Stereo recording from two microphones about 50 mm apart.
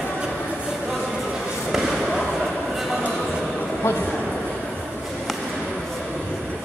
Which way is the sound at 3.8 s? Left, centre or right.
Left.